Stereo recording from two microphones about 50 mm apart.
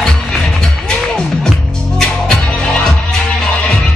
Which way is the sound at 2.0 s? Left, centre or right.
Centre.